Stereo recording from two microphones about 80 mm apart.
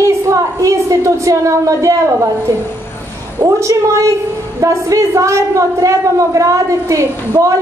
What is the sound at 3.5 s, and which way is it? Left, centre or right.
A woman's voice, right.